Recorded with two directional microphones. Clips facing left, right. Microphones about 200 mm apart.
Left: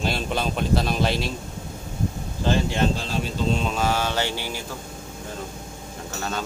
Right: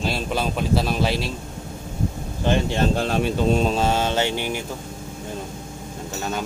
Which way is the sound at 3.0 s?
60° right (ahead or behind).